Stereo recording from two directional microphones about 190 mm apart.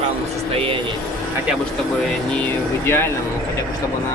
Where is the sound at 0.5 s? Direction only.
30° right (ahead or behind).